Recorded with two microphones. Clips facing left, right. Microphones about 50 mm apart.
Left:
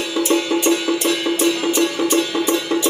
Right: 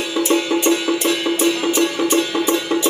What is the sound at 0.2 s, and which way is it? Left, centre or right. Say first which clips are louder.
Music: even; right.